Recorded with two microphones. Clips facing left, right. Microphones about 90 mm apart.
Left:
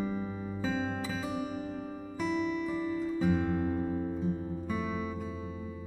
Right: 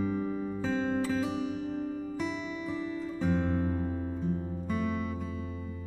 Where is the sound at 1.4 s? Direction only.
45° left (ahead or behind).